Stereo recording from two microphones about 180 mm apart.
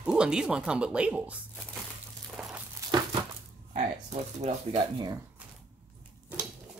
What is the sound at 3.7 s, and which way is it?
Speech, 40° right (ahead or behind).